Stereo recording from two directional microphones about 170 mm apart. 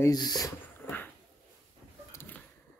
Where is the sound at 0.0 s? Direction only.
25° left (ahead or behind).